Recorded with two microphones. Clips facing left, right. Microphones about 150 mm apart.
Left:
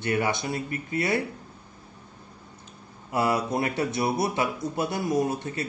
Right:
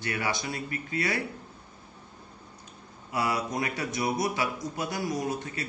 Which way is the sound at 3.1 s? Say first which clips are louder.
Left 4 dB; 30° left (ahead or behind).